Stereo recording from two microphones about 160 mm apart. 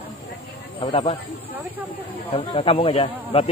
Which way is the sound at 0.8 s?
35° left (ahead or behind).